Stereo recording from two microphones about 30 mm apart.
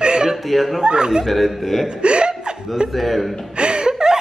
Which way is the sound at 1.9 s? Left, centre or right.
Right.